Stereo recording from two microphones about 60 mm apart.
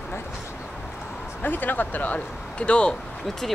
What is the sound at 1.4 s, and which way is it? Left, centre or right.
Speech, left.